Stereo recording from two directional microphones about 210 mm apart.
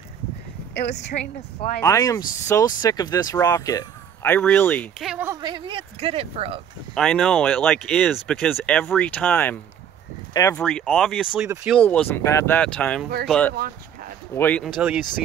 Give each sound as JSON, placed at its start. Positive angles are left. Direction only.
{"t": 0.7, "sound": "speech", "side_deg": 55}
{"t": 1.8, "sound": "speech", "side_deg": 15}
{"t": 5.0, "sound": "speech", "side_deg": -10}
{"t": 5.4, "sound": "speech", "side_deg": -25}
{"t": 7.0, "sound": "speech", "side_deg": 5}
{"t": 10.6, "sound": "speech", "side_deg": 5}
{"t": 11.8, "sound": "speech", "side_deg": 5}